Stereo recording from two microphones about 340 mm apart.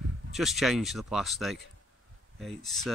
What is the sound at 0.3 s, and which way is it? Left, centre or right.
Speech, centre.